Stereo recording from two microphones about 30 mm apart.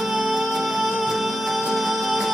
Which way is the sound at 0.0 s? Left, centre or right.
Centre.